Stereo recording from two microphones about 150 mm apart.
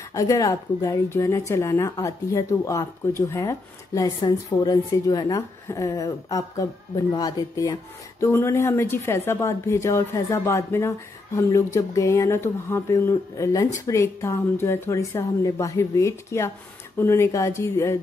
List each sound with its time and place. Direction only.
0.1 s a woman's voice: 25° left (ahead or behind)